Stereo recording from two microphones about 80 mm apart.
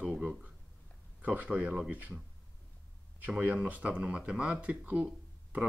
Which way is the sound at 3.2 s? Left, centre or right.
Centre.